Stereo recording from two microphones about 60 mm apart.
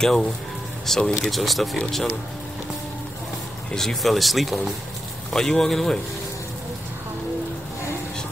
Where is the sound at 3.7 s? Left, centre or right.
Centre.